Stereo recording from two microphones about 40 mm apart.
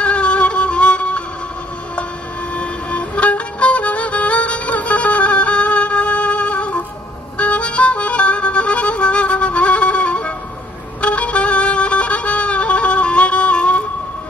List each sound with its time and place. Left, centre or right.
0.0 s music: left
2.5 s music: left